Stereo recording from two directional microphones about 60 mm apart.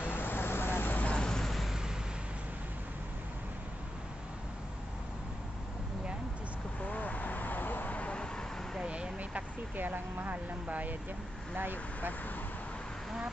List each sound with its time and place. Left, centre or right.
0.0 s vehicle: left
1.0 s vehicle: centre
6.9 s vehicle: left
8.8 s vehicle: centre; by 10.3 s right
10.3 s speech: right